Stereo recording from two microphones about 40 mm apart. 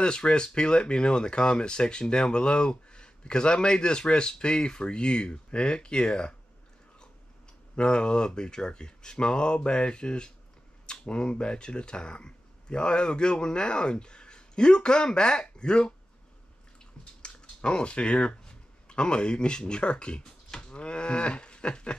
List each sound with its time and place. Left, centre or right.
0.0 s speech: left
7.7 s speech: left
17.2 s speech: left
20.2 s livestock: centre
20.7 s cattle: left